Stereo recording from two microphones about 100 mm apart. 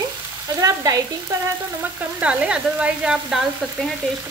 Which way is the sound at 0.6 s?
35° right (ahead or behind).